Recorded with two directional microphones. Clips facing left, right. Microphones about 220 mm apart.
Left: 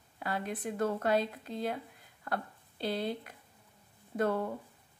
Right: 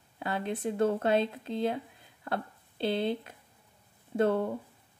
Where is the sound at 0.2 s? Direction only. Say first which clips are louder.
Right 4 dB; 25° right (ahead or behind).